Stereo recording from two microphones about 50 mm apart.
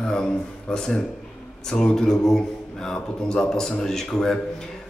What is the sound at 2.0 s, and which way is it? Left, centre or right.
Mantra, centre.